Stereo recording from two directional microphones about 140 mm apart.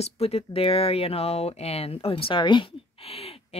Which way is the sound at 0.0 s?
45° left (ahead or behind).